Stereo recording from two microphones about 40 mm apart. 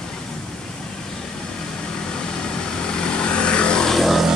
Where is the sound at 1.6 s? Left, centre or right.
Left.